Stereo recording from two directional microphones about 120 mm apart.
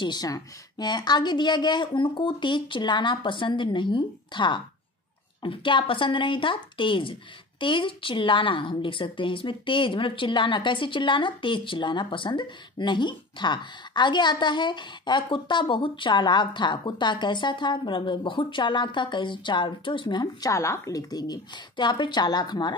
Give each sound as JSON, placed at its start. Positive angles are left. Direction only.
{"t": 0.0, "sound": "a woman's voice", "side_deg": 35}